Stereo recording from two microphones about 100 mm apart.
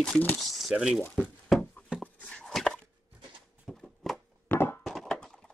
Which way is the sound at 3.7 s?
5° left (ahead or behind).